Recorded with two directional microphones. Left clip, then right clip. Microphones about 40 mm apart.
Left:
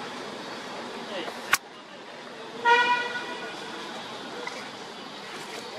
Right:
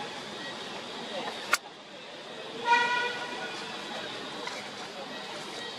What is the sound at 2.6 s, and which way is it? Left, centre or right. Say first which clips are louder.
Vehicle: left 4 dB; centre.